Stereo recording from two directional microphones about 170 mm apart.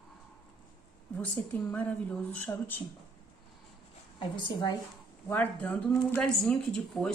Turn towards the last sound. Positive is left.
turn(degrees=5)  # may be behind; listen again after turning